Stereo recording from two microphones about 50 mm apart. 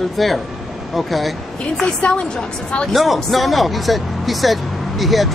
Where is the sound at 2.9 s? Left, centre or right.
Centre.